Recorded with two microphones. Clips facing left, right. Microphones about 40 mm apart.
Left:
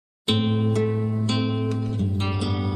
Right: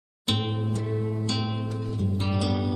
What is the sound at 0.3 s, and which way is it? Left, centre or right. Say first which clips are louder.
Music: left 5 dB; left.